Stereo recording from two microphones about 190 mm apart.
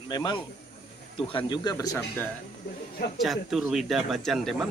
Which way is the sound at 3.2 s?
Centre (ahead or behind).